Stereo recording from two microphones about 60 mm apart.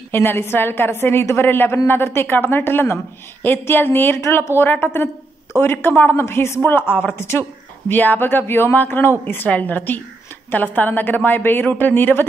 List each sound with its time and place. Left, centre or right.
0.1 s speech: left